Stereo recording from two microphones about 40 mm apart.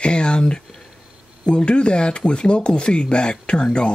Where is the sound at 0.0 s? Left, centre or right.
Left.